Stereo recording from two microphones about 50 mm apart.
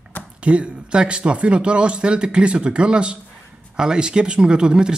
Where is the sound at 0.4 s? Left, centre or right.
Right.